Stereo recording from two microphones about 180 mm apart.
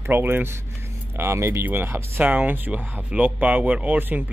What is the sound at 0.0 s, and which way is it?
Speech, 10° right (ahead or behind).